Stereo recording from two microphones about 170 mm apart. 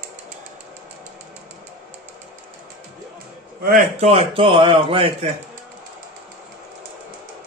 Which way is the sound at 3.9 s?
40° right (ahead or behind).